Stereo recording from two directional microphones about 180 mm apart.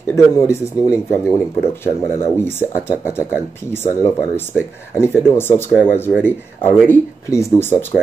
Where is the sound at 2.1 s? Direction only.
15° left (ahead or behind).